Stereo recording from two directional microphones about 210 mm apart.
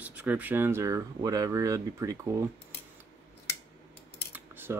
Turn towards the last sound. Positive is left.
turn(degrees=-10)  # may be behind; listen again after turning